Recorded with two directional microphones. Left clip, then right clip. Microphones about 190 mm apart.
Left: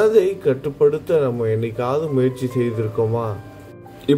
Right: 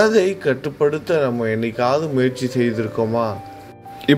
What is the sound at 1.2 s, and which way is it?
Speech, 45° right (ahead or behind).